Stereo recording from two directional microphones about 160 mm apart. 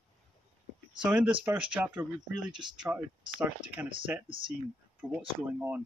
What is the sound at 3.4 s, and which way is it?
Speech, 10° right (ahead or behind).